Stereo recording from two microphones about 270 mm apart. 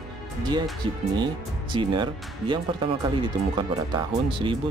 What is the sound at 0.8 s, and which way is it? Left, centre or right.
Speech, centre.